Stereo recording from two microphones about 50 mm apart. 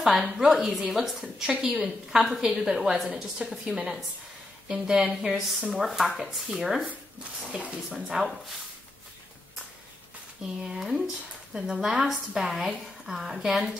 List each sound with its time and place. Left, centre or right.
0.0 s a woman's voice: centre
7.4 s speech: right
7.9 s a woman's voice: centre
10.4 s a woman's voice: centre